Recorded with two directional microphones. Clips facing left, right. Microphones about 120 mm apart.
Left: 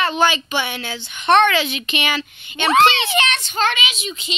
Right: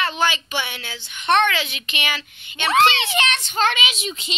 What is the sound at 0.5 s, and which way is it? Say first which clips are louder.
Speech: left 5 dB; 50° left (ahead or behind).